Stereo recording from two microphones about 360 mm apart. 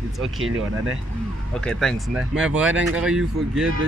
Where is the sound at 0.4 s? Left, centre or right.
Right.